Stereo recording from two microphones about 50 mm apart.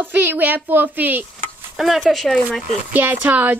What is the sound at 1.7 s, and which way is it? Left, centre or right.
Speech, centre.